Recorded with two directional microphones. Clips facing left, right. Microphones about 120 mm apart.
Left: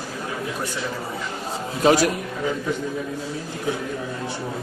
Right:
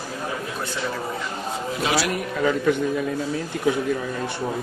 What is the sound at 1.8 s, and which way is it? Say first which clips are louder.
Speech: left 7 dB; 45° left (ahead or behind).